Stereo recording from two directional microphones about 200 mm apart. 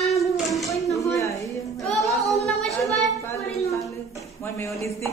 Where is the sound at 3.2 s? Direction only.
15° left (ahead or behind).